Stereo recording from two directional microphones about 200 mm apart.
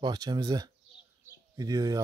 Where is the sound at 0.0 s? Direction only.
20° right (ahead or behind).